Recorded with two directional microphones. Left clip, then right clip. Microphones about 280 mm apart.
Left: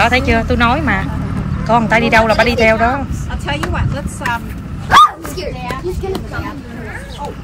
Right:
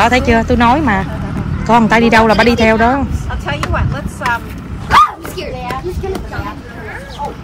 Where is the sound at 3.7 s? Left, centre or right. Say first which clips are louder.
Right 3 dB; left.